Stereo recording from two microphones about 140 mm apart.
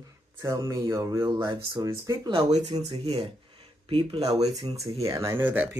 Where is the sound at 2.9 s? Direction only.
40° right (ahead or behind).